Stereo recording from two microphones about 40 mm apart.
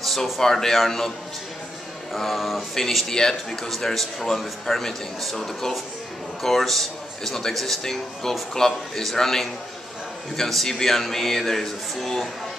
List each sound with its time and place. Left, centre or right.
0.0 s a man's voice: centre
2.1 s a man's voice: centre